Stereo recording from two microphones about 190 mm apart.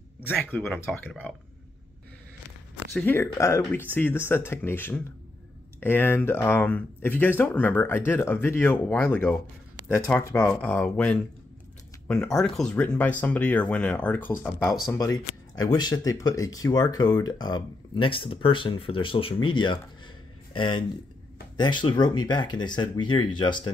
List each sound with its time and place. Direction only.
0.3 s speech: 10° left (ahead or behind)
2.9 s speech: 10° left (ahead or behind); by 23.7 s 25° left (ahead or behind)